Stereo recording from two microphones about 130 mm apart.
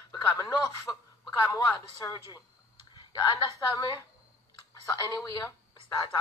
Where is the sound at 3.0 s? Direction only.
35° left (ahead or behind).